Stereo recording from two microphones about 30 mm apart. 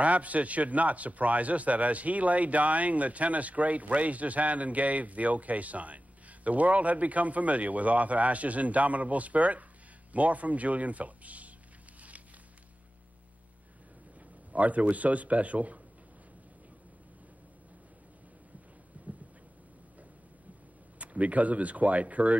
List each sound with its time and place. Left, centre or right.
0.0 s a man's voice: right
14.5 s a man's voice: right
18.9 s a sound: right
21.0 s a man's voice: right